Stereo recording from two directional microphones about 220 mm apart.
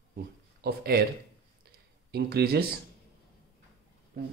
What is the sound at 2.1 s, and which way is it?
Speech, 50° right (ahead or behind).